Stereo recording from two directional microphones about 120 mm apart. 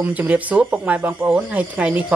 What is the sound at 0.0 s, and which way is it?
Music, 10° right (ahead or behind).